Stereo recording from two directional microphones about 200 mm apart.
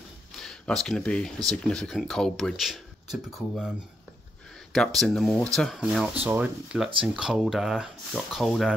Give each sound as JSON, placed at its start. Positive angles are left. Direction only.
{"t": 0.4, "sound": "speech", "side_deg": 0}
{"t": 4.7, "sound": "speech", "side_deg": 0}